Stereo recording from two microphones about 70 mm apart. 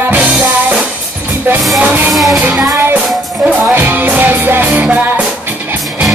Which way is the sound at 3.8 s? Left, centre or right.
Right.